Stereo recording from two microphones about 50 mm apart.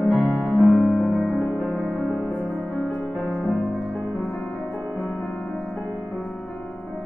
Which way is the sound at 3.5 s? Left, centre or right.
Left.